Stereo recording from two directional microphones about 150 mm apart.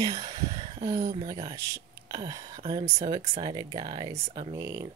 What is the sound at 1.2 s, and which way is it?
Speech, 30° right (ahead or behind).